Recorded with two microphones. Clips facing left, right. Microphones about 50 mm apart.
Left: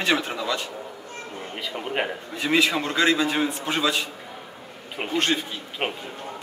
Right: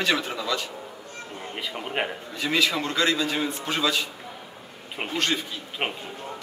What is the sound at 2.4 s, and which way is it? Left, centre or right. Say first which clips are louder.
A man's voice: left 3 dB; left.